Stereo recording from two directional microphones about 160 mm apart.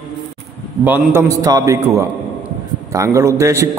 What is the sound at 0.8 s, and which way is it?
A man's voice, 15° right (ahead or behind).